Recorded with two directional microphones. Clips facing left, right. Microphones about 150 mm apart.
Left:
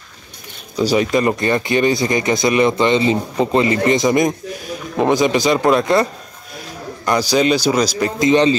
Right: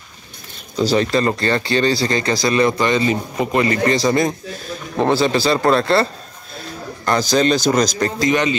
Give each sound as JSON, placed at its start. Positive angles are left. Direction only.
{"t": 0.7, "sound": "speech", "side_deg": 10}
{"t": 7.1, "sound": "speech", "side_deg": 10}
{"t": 8.2, "sound": "speech", "side_deg": 30}